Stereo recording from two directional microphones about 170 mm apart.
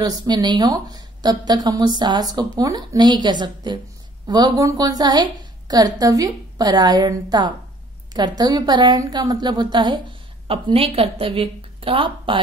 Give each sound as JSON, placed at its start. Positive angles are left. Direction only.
{"t": 0.0, "sound": "a woman's voice", "side_deg": -25}